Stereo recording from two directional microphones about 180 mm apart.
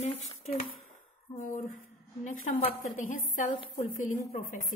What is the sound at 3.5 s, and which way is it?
Speech, 30° left (ahead or behind).